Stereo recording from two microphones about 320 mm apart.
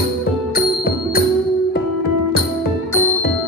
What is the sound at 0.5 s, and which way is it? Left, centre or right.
Music, left.